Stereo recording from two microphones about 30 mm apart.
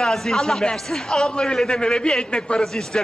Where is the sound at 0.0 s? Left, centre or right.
Centre.